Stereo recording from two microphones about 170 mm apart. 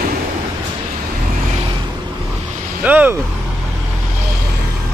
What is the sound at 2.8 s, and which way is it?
Vehicle, 10° right (ahead or behind).